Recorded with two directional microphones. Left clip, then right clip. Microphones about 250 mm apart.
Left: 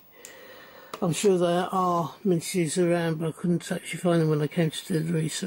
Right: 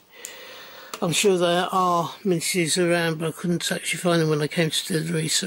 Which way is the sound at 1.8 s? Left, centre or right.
Left.